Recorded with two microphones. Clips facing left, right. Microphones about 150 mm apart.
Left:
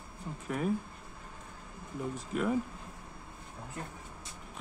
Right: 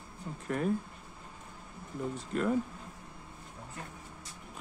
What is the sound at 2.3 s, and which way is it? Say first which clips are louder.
Speech: right 1 dB; 5° left (ahead or behind).